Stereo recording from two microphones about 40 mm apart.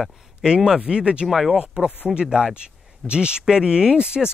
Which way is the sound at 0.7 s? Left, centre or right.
Centre.